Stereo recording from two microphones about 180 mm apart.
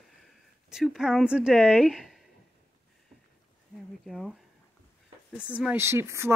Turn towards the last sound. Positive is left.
turn(degrees=-15)  # may be behind; listen again after turning